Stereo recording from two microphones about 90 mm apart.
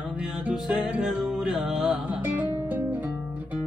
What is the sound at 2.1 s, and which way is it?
Music, 20° right (ahead or behind).